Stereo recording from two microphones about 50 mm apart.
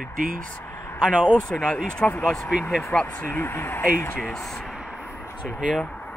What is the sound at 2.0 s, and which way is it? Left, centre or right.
Speech, left.